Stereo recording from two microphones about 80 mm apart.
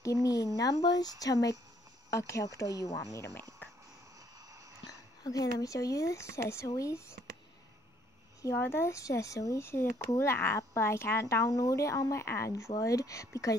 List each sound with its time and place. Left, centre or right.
0.0 s a sound: left
0.6 s speech: left
5.2 s speech: left
8.5 s speech: left